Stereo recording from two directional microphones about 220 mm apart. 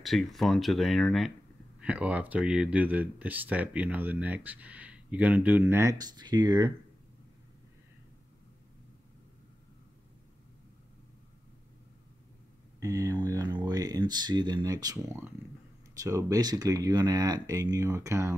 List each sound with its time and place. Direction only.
0.0 s speech: centre (ahead or behind); by 6.7 s 20° right (ahead or behind)
12.8 s speech: 15° right (ahead or behind)